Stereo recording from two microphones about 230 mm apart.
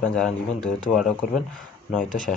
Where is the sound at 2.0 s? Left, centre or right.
Left.